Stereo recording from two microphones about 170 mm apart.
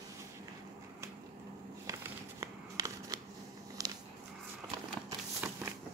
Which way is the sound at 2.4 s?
20° right (ahead or behind).